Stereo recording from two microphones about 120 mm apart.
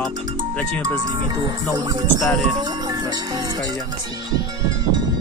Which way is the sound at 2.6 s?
35° right (ahead or behind).